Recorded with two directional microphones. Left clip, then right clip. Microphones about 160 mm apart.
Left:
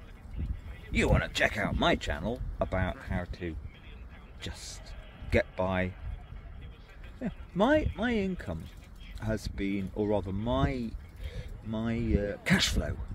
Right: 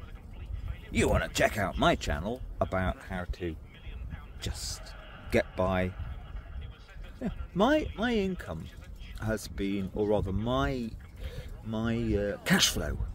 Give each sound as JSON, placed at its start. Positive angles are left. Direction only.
{"t": 0.9, "sound": "speech", "side_deg": -5}
{"t": 4.6, "sound": "speech", "side_deg": -40}
{"t": 5.3, "sound": "speech", "side_deg": -10}
{"t": 7.2, "sound": "speech", "side_deg": -5}